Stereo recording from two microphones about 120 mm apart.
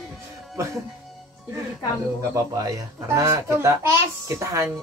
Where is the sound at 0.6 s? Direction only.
25° right (ahead or behind).